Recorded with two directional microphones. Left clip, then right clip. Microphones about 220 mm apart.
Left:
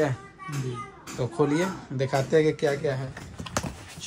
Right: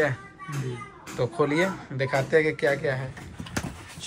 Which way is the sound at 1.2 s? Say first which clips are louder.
Right 1 dB; 20° left (ahead or behind).